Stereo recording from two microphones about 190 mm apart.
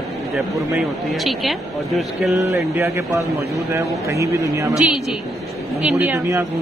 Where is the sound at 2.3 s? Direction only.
15° right (ahead or behind).